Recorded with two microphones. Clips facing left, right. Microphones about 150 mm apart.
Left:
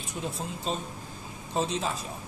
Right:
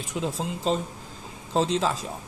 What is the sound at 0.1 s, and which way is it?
Speech, 90° right.